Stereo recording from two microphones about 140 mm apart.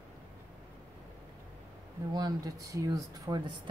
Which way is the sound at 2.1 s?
25° right (ahead or behind).